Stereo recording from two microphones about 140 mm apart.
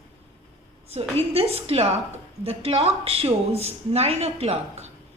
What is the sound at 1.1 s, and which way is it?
A woman's voice, 45° right (ahead or behind).